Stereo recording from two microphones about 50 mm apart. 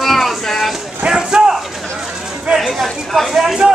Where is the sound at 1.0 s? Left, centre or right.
Centre.